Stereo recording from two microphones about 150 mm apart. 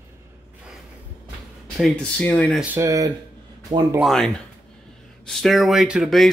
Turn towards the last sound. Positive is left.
turn(degrees=0)  # may be behind; listen again after turning